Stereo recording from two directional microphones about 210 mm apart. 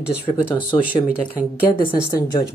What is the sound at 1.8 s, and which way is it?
Speech, 20° left (ahead or behind).